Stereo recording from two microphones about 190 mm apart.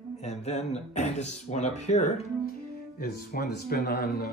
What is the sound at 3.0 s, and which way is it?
Speech, 55° left (ahead or behind).